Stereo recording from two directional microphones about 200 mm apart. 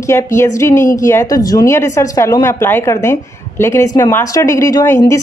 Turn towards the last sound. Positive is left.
turn(degrees=15)  # may be behind; listen again after turning